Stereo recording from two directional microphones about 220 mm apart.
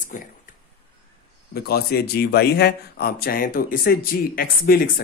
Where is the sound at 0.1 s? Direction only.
35° left (ahead or behind).